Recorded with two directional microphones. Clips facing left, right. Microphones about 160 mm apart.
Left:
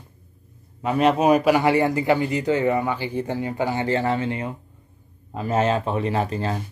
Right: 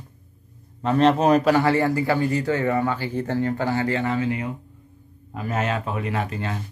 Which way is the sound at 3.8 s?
30° left (ahead or behind).